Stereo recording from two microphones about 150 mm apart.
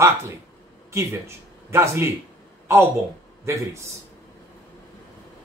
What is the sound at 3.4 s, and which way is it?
Speech, 20° right (ahead or behind).